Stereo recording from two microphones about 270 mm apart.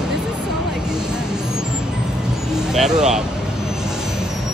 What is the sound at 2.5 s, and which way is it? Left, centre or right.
Speech, centre.